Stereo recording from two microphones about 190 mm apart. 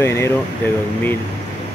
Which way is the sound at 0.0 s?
15° left (ahead or behind).